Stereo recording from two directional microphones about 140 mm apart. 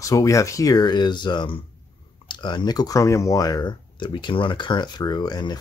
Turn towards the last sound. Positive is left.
turn(degrees=30)  # may be behind; listen again after turning